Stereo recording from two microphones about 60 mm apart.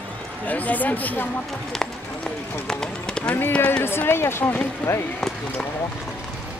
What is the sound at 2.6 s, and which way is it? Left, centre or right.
Speech, centre.